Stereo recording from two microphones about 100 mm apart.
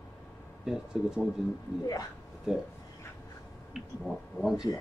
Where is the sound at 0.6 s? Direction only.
5° right (ahead or behind).